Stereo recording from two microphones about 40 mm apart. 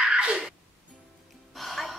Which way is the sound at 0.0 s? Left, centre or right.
Right.